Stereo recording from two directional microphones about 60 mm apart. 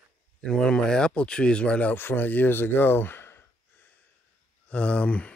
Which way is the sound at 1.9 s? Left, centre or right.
Left.